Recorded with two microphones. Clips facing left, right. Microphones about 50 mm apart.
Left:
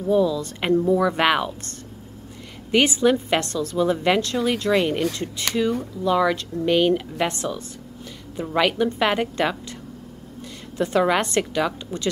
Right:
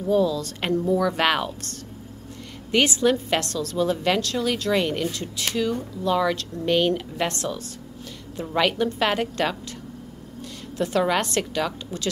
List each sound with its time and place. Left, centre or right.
0.0 s a woman's voice: centre
2.7 s a woman's voice: centre
10.8 s a woman's voice: centre